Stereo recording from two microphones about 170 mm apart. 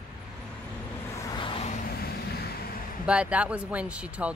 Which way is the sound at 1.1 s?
20° left (ahead or behind).